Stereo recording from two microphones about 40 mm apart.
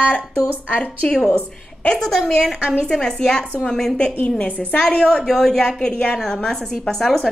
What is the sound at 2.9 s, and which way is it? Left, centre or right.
Speech, left.